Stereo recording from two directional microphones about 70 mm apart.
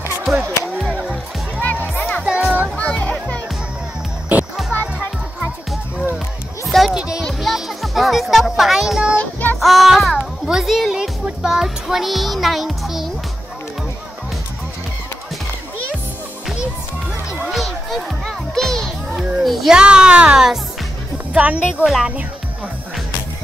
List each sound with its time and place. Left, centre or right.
0.2 s music: centre
1.6 s music: left
2.2 s music: centre
2.8 s music: centre
4.3 s music: right
5.4 s music: centre
9.1 s child singing: left
9.6 s music: centre
17.5 s music: centre
19.7 s speech: centre